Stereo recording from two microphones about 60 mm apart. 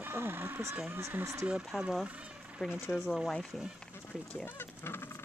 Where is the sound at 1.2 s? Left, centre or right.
Right.